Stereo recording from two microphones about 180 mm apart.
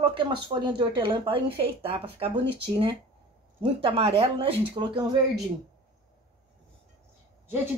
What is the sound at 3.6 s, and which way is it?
Speech, 30° right (ahead or behind).